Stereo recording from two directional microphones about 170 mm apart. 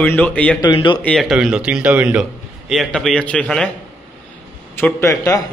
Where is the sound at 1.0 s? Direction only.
Centre (ahead or behind).